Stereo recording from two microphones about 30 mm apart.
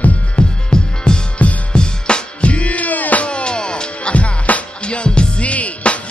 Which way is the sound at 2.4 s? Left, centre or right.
Left.